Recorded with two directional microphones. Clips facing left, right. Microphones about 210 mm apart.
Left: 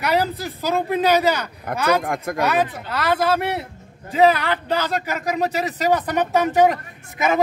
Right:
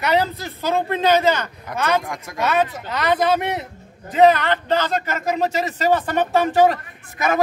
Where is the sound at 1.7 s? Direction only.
55° left (ahead or behind).